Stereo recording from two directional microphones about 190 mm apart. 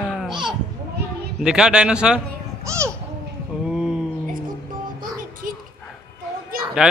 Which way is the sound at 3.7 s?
5° right (ahead or behind).